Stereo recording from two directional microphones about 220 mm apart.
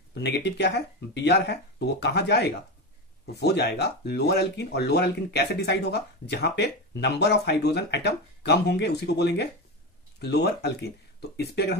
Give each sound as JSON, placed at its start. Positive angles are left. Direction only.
{"t": 0.1, "sound": "speech", "side_deg": 50}